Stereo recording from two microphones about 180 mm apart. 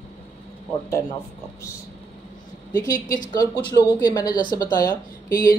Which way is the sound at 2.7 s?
20° left (ahead or behind).